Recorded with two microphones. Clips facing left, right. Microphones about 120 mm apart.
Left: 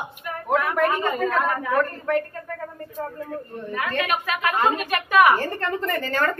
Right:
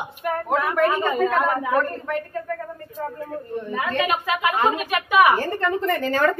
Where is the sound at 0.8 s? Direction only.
10° right (ahead or behind).